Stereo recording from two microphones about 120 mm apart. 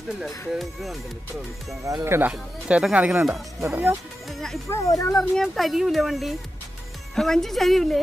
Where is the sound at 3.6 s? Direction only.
20° right (ahead or behind).